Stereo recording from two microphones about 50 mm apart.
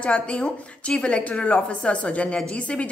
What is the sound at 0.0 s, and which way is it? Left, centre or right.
A woman's voice, left.